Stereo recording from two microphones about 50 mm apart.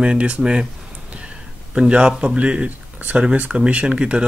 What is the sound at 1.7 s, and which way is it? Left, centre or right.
Speech, centre.